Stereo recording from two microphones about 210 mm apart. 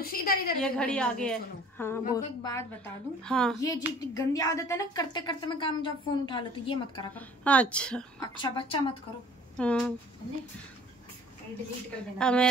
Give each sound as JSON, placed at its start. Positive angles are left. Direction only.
{"t": 0.0, "sound": "a sound", "side_deg": 45}
{"t": 0.6, "sound": "a woman's voice", "side_deg": 5}
{"t": 3.5, "sound": "a woman's voice", "side_deg": 15}
{"t": 7.2, "sound": "a woman's voice", "side_deg": 5}
{"t": 8.2, "sound": "a woman's voice", "side_deg": 20}
{"t": 9.6, "sound": "a woman's voice", "side_deg": 5}
{"t": 12.2, "sound": "a woman's voice", "side_deg": 5}